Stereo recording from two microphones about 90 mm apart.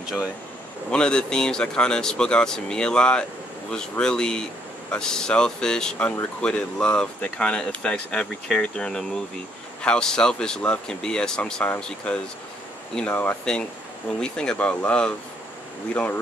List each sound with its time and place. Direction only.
0.0 s speech: 5° right (ahead or behind)
0.9 s speech: 10° left (ahead or behind)
14.2 s speech: 10° left (ahead or behind)